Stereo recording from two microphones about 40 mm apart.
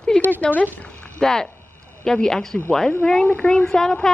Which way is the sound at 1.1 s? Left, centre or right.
Centre.